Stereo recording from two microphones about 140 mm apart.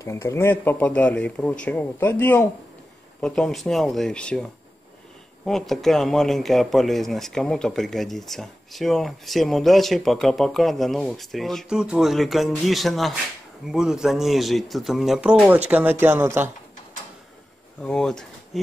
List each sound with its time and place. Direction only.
0.0 s speech: 20° left (ahead or behind); by 16.4 s 15° right (ahead or behind)
17.8 s speech: 5° left (ahead or behind)